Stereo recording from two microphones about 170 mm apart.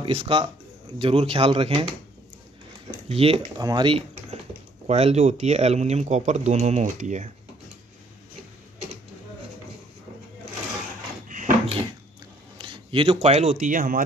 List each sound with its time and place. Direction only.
0.0 s speech: 35° right (ahead or behind)
3.1 s speech: 35° right (ahead or behind)
3.5 s speech: 25° right (ahead or behind)
4.8 s speech: 40° right (ahead or behind)
11.2 s a sound: 50° right (ahead or behind)
12.5 s speech: 30° right (ahead or behind); by 14.0 s 50° right (ahead or behind)